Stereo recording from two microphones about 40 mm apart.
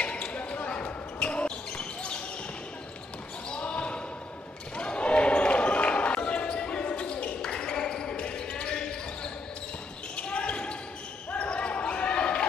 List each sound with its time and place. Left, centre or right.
0.0 s basketball bounce: left
3.6 s basketball bounce: left